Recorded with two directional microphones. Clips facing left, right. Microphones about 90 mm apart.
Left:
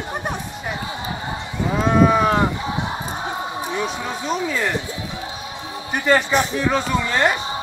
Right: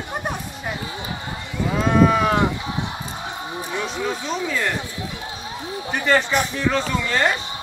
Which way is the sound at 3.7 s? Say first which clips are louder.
Right 3 dB; 10° left (ahead or behind).